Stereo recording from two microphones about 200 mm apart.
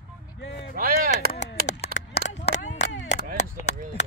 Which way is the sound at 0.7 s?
45° right (ahead or behind).